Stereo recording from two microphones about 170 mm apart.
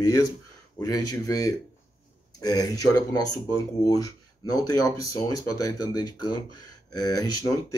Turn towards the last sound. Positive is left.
turn(degrees=20)  # may be behind; listen again after turning